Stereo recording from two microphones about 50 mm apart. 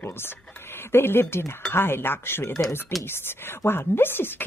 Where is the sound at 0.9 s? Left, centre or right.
Left.